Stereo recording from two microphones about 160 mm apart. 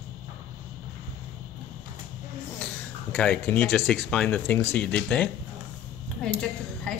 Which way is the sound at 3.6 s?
Centre (ahead or behind).